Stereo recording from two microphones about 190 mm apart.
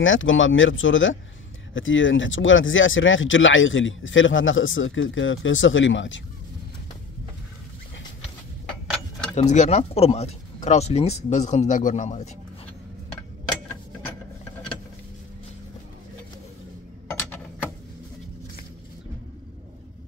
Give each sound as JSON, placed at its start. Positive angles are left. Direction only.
{"t": 0.0, "sound": "speech", "side_deg": 90}
{"t": 9.3, "sound": "speech", "side_deg": 40}
{"t": 17.2, "sound": "a sound", "side_deg": 10}